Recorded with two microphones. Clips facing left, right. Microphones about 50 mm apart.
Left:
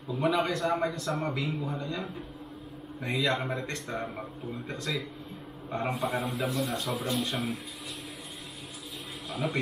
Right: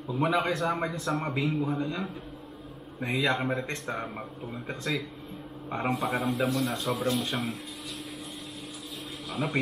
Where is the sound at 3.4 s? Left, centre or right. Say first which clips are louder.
Right 3 dB; centre.